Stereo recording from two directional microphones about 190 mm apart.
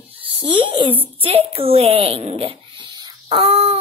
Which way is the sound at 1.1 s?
30° right (ahead or behind).